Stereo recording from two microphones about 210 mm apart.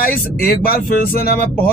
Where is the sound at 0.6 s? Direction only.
45° left (ahead or behind).